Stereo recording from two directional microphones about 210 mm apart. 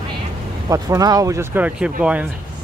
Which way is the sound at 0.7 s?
15° right (ahead or behind).